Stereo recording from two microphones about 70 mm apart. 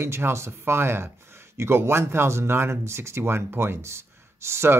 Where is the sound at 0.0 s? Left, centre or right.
Right.